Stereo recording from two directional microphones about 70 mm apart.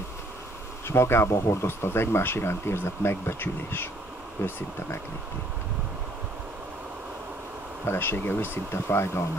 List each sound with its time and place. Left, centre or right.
0.8 s speech: left
7.8 s speech: left